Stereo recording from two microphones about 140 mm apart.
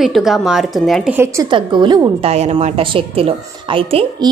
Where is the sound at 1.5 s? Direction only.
35° right (ahead or behind).